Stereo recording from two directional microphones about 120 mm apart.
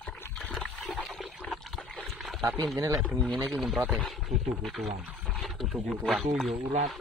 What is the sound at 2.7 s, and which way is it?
Speech, 25° right (ahead or behind).